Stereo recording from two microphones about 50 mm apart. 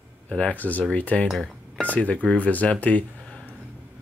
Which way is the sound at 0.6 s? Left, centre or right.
Left.